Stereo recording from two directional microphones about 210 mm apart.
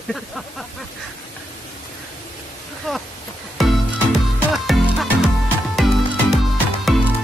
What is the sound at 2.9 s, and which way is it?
Speech, centre (ahead or behind).